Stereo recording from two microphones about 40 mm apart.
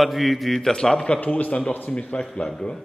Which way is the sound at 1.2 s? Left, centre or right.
Left.